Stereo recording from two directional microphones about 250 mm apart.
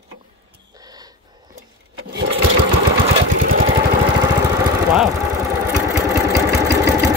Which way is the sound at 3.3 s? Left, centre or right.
Right.